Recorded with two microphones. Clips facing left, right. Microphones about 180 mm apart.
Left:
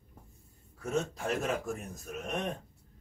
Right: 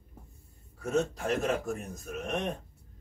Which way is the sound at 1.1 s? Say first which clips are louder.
Right 3 dB; centre (ahead or behind).